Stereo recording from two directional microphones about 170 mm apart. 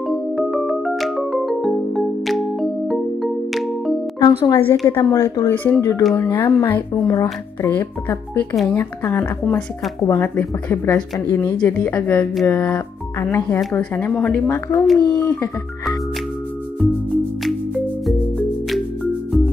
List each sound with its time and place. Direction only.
0.1 s music: centre (ahead or behind)
4.2 s a woman's voice: 20° left (ahead or behind)
13.6 s speech: centre (ahead or behind); by 15.5 s 20° left (ahead or behind)
17.1 s music: centre (ahead or behind)